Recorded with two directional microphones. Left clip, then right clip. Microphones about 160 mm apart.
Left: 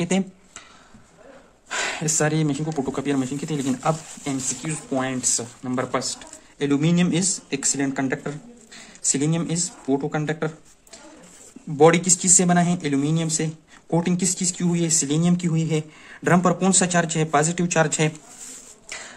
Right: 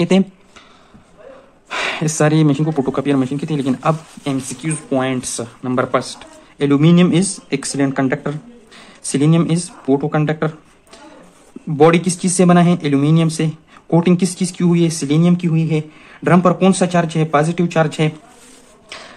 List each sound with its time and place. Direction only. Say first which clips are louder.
0.1 s speech: right 9 dB; 10° right (ahead or behind)
1.7 s speech: right 5 dB; 10° right (ahead or behind); by 10.5 s 30° right (ahead or behind)
11.7 s speech: right 4 dB; 20° right (ahead or behind)
18.9 s a sound: right 3 dB; 5° right (ahead or behind)